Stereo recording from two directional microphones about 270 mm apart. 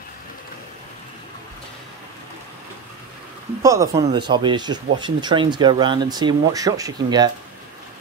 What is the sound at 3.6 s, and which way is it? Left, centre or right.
Speech, centre.